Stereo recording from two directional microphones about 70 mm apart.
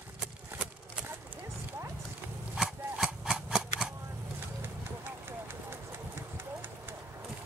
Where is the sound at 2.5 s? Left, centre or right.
Centre.